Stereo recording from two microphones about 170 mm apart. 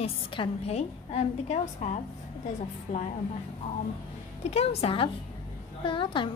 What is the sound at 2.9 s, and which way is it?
Speech, 55° left (ahead or behind).